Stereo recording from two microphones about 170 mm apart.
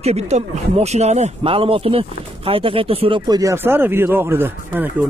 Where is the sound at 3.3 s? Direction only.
20° right (ahead or behind).